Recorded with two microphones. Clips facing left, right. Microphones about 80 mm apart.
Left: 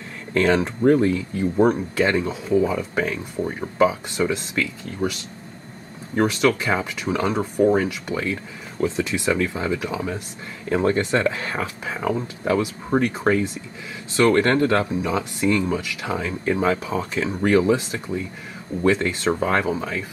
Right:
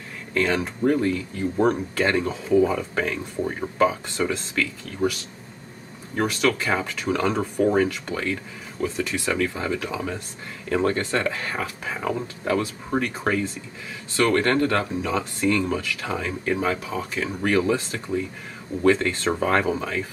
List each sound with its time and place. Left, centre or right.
0.3 s speech: left
1.6 s speech: centre
4.3 s speech: left
6.1 s speech: left
16.4 s speech: left
19.4 s speech: centre